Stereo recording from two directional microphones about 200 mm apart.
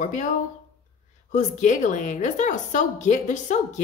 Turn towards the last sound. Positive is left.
turn(degrees=35)  # may be behind; listen again after turning